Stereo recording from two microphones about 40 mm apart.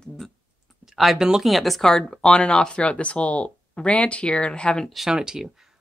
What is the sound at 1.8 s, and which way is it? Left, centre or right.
Speech, centre.